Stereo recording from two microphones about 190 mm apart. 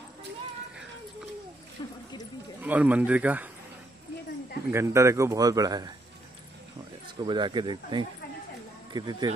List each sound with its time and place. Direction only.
1.8 s a sound: 25° left (ahead or behind)
2.6 s a man's voice: 10° right (ahead or behind)
4.6 s a man's voice: 15° right (ahead or behind)
7.2 s speech: 25° right (ahead or behind)